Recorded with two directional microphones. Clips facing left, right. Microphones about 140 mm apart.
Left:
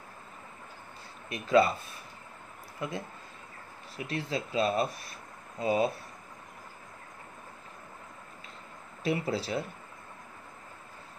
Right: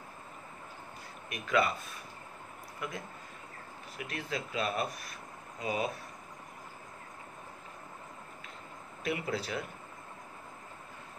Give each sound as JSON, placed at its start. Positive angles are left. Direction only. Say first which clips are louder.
{"t": 1.3, "sound": "speech", "louder": "left 6 dB", "side_deg": 30}
{"t": 2.8, "sound": "speech", "louder": "left 4 dB", "side_deg": 25}
{"t": 4.1, "sound": "speech", "louder": "left 5 dB", "side_deg": 30}
{"t": 9.0, "sound": "speech", "louder": "left 4 dB", "side_deg": 30}